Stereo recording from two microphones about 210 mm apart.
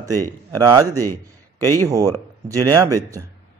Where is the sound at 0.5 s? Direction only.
15° right (ahead or behind).